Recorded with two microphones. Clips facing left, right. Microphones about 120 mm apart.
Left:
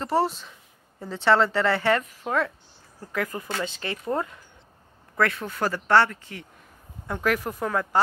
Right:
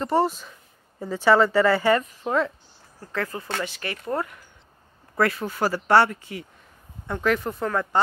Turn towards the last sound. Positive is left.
turn(degrees=5)  # may be behind; listen again after turning